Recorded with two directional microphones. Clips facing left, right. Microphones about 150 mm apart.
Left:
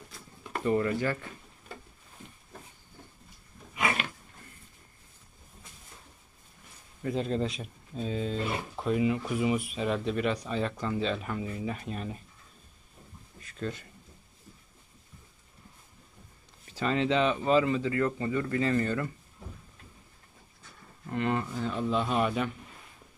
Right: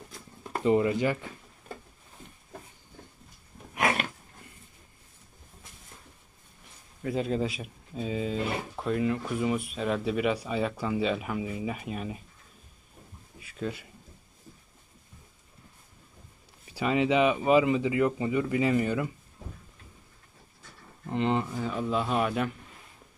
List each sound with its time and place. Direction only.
0.7 s speech: 15° right (ahead or behind)
7.0 s speech: centre (ahead or behind)
13.4 s a sound: 5° right (ahead or behind)
16.6 s speech: 10° right (ahead or behind)
21.1 s speech: 20° right (ahead or behind)
21.6 s speech: 5° right (ahead or behind)